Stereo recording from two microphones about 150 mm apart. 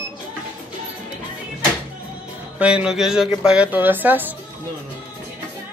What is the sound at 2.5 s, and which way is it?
Speech, 5° right (ahead or behind).